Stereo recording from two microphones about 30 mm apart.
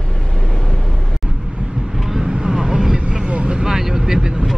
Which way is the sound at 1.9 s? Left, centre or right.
Centre.